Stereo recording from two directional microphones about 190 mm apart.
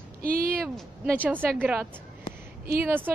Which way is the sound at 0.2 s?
50° right (ahead or behind).